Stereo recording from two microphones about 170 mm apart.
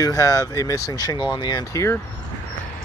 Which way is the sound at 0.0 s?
20° left (ahead or behind).